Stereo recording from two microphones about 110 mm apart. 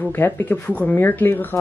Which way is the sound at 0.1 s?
20° left (ahead or behind).